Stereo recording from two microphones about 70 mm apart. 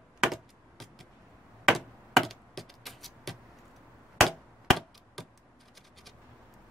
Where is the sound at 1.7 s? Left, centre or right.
Centre.